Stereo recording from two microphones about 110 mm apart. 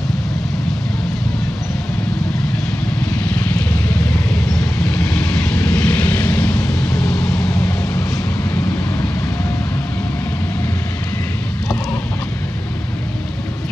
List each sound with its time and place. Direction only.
3.3 s vehicle: 15° left (ahead or behind)
7.4 s vehicle: 20° left (ahead or behind)